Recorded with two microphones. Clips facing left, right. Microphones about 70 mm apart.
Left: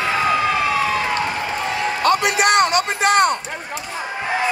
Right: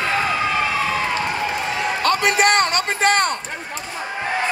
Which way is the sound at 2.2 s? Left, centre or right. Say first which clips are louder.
Left 1 dB; right.